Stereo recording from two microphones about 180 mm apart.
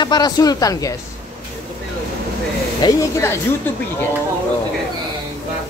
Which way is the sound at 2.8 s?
20° left (ahead or behind).